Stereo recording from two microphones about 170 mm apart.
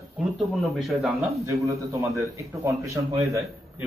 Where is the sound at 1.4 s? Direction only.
20° right (ahead or behind).